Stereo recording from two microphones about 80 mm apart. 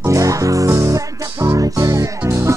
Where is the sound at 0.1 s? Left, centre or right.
Right.